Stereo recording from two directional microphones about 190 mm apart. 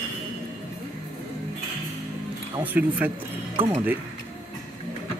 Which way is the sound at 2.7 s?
10° right (ahead or behind).